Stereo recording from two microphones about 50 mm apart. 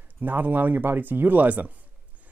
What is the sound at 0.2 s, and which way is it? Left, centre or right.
Speech, right.